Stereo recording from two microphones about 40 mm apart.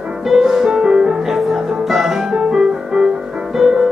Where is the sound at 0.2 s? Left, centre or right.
Centre.